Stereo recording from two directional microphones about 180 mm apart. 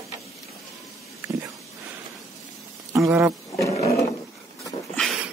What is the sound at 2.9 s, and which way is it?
Speech, 15° right (ahead or behind).